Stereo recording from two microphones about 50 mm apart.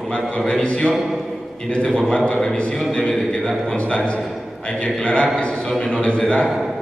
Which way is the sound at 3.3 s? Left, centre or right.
Left.